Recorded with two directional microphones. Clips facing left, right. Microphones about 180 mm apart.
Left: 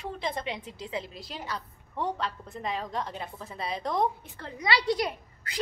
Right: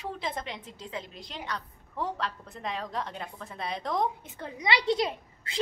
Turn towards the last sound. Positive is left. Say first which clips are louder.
# right 1 dB
turn(degrees=-25)  # may be behind; listen again after turning